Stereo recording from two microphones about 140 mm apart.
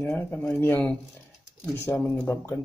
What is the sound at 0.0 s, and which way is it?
Speech, 10° left (ahead or behind).